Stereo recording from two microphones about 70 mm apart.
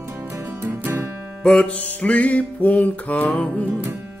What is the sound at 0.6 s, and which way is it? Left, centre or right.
Music, right.